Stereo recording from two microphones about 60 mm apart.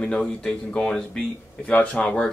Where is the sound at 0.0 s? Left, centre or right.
Centre.